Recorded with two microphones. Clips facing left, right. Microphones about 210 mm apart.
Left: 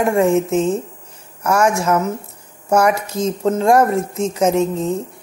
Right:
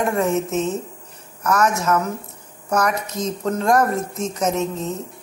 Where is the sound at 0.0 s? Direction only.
30° left (ahead or behind).